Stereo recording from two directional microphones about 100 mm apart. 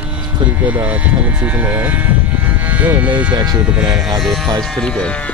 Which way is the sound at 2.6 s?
15° right (ahead or behind).